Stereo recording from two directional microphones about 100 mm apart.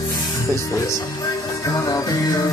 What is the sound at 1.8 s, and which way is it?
Music, 35° left (ahead or behind).